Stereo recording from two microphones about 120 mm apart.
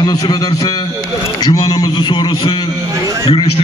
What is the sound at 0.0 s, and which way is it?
A man's voice, 35° left (ahead or behind).